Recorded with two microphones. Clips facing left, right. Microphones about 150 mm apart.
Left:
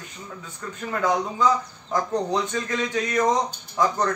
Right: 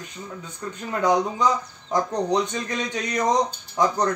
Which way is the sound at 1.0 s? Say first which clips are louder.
Right 2 dB; 20° right (ahead or behind).